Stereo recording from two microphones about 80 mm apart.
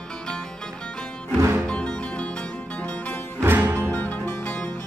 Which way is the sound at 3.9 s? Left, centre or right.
Left.